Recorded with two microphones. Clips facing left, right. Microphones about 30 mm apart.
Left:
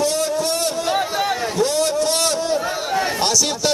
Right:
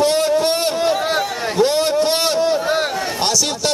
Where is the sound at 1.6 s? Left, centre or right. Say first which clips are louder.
Right 4 dB; right.